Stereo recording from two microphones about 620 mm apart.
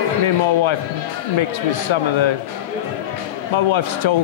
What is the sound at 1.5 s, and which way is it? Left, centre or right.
Speech, left.